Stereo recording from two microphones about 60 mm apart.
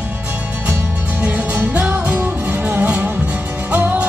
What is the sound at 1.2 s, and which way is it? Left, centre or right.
Music, right.